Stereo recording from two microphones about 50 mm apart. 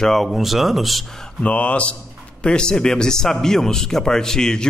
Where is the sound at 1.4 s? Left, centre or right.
Left.